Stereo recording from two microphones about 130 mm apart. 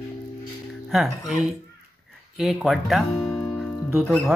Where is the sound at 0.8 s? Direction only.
Centre (ahead or behind).